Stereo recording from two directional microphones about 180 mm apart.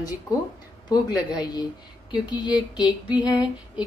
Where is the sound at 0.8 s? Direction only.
25° left (ahead or behind).